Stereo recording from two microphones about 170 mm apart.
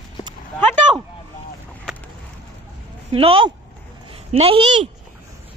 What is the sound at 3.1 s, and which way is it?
Speech, 30° right (ahead or behind).